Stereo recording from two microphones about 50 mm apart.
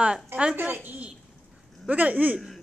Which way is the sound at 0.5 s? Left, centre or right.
Right.